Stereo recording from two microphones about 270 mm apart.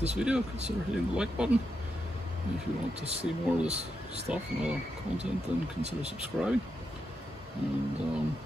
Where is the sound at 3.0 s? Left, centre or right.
Right.